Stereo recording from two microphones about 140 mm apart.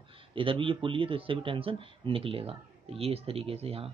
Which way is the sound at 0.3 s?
40° right (ahead or behind).